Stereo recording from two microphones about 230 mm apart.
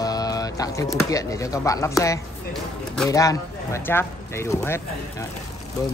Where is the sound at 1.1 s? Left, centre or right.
Centre.